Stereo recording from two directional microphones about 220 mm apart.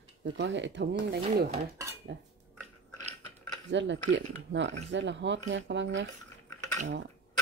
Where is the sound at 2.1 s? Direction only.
50° right (ahead or behind).